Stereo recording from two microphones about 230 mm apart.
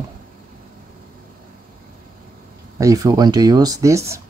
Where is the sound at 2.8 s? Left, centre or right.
Centre.